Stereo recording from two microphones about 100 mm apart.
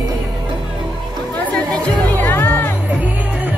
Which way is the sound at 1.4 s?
15° left (ahead or behind).